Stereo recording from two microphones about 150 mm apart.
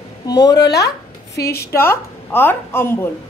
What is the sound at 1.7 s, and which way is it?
A woman's voice, 15° left (ahead or behind).